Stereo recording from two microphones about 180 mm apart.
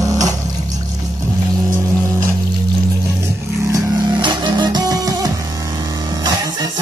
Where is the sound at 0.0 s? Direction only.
20° right (ahead or behind).